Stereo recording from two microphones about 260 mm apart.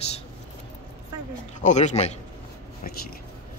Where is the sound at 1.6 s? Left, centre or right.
Left.